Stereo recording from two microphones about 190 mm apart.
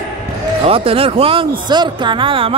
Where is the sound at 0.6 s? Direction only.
30° right (ahead or behind).